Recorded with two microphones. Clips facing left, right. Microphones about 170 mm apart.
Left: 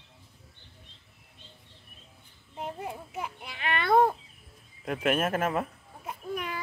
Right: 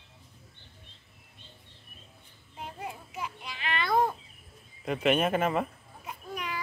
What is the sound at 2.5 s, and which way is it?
Child singing, 45° left (ahead or behind).